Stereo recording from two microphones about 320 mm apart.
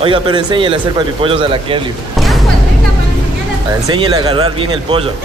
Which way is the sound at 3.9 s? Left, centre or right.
Centre.